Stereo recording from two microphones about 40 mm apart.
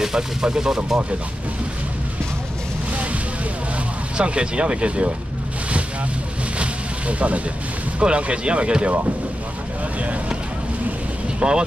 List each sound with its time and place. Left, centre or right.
0.0 s speech: centre
4.2 s speech: right
6.6 s a sound: right
8.0 s speech: right
11.3 s speech: right